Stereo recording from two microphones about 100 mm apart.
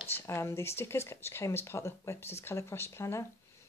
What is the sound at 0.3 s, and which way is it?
Speech, 25° left (ahead or behind).